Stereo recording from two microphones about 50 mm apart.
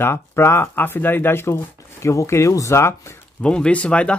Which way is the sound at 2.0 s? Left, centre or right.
Left.